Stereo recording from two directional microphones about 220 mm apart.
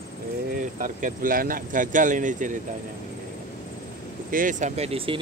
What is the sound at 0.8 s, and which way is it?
Speech, 35° right (ahead or behind).